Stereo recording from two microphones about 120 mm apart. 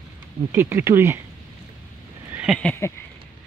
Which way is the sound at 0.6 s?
20° right (ahead or behind).